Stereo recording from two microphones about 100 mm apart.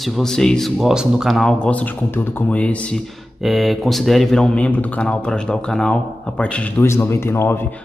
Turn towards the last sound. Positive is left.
turn(degrees=25)  # may be behind; listen again after turning